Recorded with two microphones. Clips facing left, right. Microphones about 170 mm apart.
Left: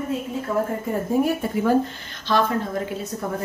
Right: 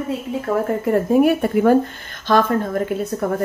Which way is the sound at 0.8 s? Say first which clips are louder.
Right 10 dB; 65° right (ahead or behind).